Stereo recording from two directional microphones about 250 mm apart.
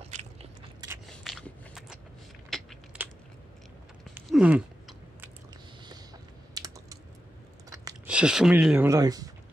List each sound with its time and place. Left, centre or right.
0.0 s biting: right
1.0 s biting: centre
2.5 s mechanisms: centre
4.1 s chewing: centre
6.5 s typing: centre
8.1 s speech: centre